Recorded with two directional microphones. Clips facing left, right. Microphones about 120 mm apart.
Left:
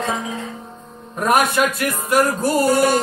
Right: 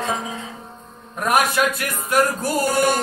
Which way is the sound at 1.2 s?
Centre (ahead or behind).